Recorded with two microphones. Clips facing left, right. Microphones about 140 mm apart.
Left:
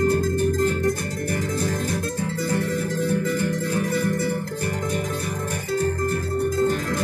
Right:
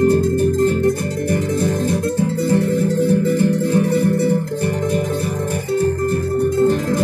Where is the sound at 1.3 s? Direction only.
30° right (ahead or behind).